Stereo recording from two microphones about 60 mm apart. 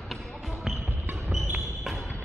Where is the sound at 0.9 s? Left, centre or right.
Right.